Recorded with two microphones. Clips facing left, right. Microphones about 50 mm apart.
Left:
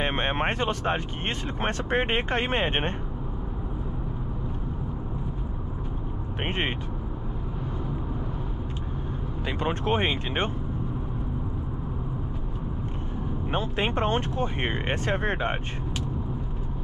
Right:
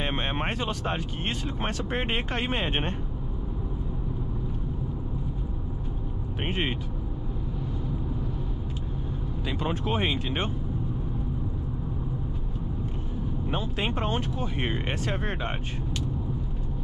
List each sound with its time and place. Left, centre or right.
0.0 s a sound: left
0.8 s speech: left
6.4 s speech: left
9.6 s speech: left
13.5 s speech: left